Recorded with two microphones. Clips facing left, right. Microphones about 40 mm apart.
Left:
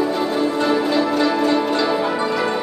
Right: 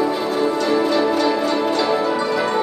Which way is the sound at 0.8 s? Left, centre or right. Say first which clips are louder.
Right 1 dB; centre.